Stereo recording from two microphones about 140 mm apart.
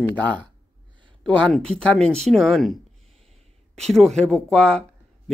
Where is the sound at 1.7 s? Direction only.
5° left (ahead or behind).